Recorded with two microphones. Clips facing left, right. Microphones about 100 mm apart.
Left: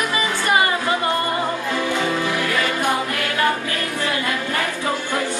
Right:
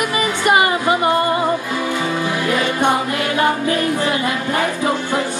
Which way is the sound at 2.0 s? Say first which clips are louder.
Right 1 dB; 20° right (ahead or behind).